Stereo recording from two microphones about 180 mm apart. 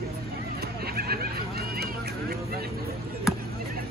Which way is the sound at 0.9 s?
55° right (ahead or behind).